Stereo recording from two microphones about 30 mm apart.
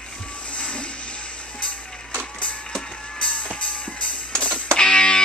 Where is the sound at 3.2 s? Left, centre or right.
Left.